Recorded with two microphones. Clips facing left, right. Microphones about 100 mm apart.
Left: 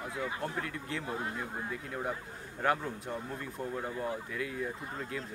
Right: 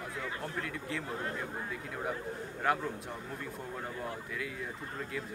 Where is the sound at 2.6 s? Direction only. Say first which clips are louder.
Left 1 dB; centre (ahead or behind).